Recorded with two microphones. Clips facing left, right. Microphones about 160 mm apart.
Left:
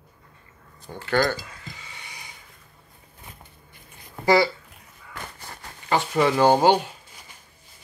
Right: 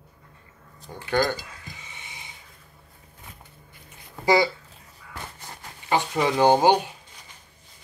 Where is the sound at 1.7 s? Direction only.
20° right (ahead or behind).